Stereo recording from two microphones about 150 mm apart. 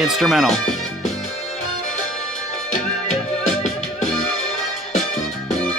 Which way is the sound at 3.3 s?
50° left (ahead or behind).